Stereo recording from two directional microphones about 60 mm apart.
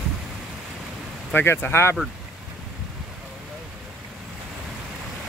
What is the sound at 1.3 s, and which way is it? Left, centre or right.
Speech, left.